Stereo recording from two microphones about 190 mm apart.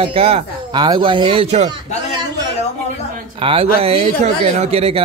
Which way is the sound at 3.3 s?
30° right (ahead or behind).